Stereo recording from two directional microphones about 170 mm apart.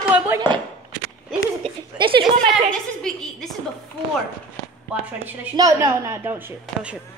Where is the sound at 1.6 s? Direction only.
30° right (ahead or behind).